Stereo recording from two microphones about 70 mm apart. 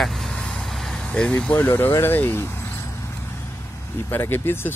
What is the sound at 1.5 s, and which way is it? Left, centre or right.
Speech, left.